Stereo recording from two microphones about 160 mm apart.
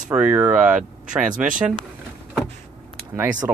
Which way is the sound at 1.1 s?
55° right (ahead or behind).